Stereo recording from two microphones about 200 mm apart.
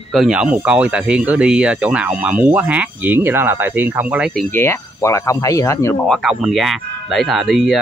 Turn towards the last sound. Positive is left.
turn(degrees=0)  # may be behind; listen again after turning